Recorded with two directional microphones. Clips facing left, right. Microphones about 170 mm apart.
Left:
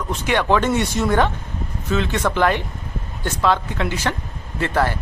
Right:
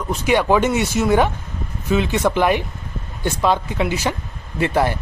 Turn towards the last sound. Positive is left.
turn(degrees=-15)  # may be behind; listen again after turning